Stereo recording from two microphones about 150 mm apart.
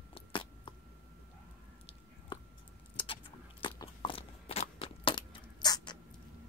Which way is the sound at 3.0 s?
35° left (ahead or behind).